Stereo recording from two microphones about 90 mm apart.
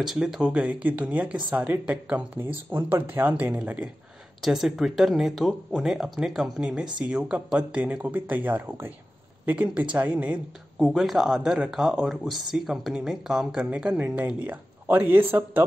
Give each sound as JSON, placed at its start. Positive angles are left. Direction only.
{"t": 0.0, "sound": "speech", "side_deg": -5}
{"t": 4.4, "sound": "speech", "side_deg": -5}
{"t": 10.8, "sound": "speech", "side_deg": 0}